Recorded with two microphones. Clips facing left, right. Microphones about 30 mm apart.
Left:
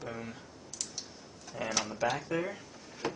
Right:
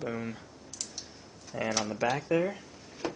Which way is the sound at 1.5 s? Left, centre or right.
Centre.